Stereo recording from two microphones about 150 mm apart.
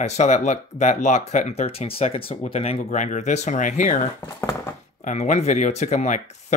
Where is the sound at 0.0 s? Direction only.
50° left (ahead or behind).